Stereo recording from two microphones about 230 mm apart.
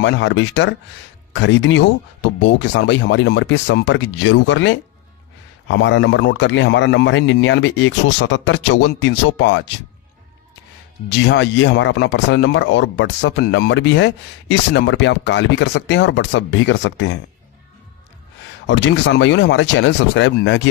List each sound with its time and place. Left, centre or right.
0.0 s speech: left
11.1 s speech: left
18.7 s speech: left